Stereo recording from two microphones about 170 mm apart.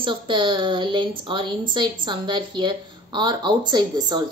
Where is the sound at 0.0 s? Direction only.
30° right (ahead or behind).